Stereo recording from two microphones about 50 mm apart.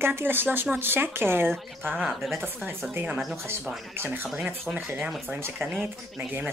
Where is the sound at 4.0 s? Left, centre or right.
Right.